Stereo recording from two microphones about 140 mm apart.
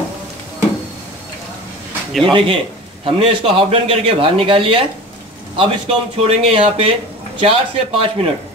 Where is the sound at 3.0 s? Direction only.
40° right (ahead or behind).